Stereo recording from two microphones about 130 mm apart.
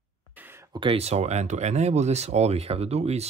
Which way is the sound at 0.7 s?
40° right (ahead or behind).